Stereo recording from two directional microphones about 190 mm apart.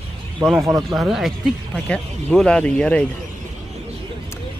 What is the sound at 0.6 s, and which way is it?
Speech, 15° right (ahead or behind).